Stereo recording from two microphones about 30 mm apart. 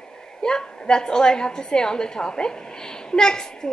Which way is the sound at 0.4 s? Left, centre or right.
Left.